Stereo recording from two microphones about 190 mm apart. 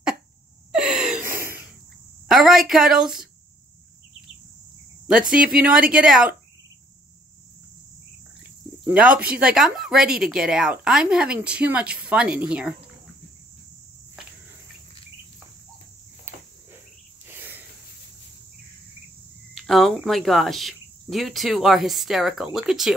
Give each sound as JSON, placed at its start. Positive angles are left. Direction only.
{"t": 0.7, "sound": "gasp", "side_deg": -5}
{"t": 1.3, "sound": "a sound", "side_deg": -10}
{"t": 2.2, "sound": "speech", "side_deg": 0}
{"t": 5.2, "sound": "speech", "side_deg": -45}
{"t": 5.9, "sound": "speech", "side_deg": -5}
{"t": 8.8, "sound": "speech", "side_deg": -5}
{"t": 9.1, "sound": "speech", "side_deg": -50}
{"t": 9.4, "sound": "speech", "side_deg": -5}
{"t": 16.3, "sound": "cricket", "side_deg": -10}
{"t": 17.3, "sound": "a sound", "side_deg": -10}
{"t": 19.5, "sound": "speech", "side_deg": 0}